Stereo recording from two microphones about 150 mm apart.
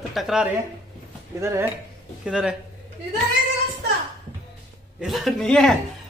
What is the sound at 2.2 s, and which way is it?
Speech, 5° right (ahead or behind).